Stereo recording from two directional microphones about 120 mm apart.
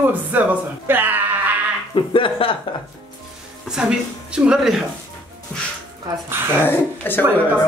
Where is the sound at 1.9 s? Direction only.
45° left (ahead or behind).